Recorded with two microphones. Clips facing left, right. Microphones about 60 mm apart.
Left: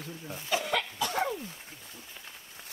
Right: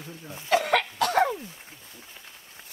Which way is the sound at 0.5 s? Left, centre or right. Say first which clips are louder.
Right 8 dB; right.